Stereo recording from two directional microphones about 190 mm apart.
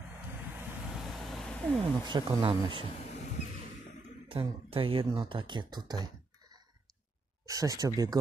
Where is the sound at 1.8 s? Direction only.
25° right (ahead or behind).